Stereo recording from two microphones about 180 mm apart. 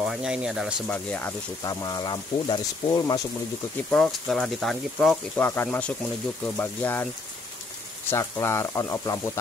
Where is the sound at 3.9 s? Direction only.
5° left (ahead or behind).